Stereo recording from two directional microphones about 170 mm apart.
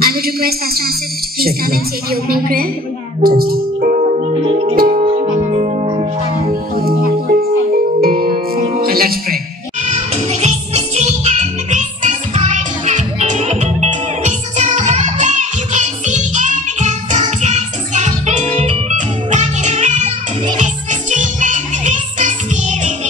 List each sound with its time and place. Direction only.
0.0 s a woman's voice: 60° right (ahead or behind)
4.2 s music: 35° right (ahead or behind)
4.7 s music: 55° right (ahead or behind)
5.0 s music: 35° right (ahead or behind)
6.3 s speech: 50° right (ahead or behind)
8.0 s music: 60° right (ahead or behind)
9.8 s music: 40° right (ahead or behind)